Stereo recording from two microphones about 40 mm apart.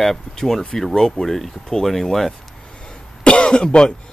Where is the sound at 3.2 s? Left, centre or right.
Left.